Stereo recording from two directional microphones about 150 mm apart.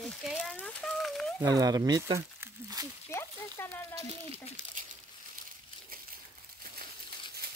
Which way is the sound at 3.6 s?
15° left (ahead or behind).